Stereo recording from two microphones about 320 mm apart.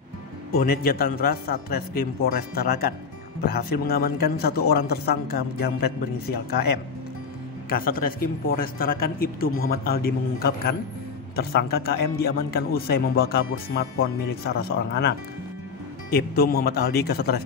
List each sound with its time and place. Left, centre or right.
0.5 s a man's voice: left
16.3 s a man's voice: left